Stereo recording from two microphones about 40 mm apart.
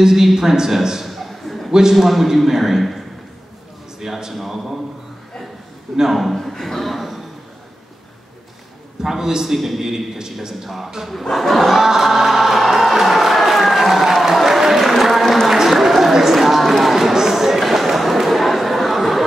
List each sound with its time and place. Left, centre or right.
0.0 s a man's voice: centre
1.7 s a man's voice: centre
2.0 s a man's voice: centre
4.0 s a man's voice: centre
5.9 s a man's voice: centre
9.0 s a man's voice: centre
11.3 s a man's voice: centre
11.8 s music: centre
15.4 s run: centre